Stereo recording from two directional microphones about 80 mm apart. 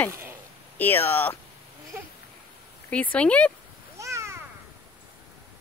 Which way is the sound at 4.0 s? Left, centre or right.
Right.